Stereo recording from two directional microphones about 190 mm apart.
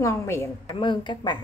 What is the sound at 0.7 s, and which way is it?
Speech, 25° left (ahead or behind).